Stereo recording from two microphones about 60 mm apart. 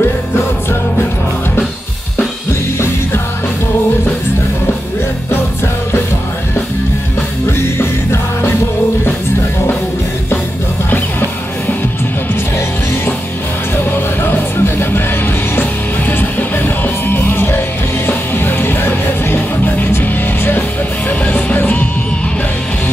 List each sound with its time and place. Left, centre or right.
7.4 s music: left
10.9 s music: left
14.2 s music: left
16.1 s music: left